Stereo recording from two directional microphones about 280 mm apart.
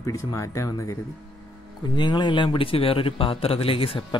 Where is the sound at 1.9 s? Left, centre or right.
Centre.